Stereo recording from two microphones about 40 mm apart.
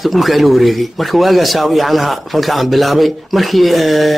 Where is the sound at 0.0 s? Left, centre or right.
Centre.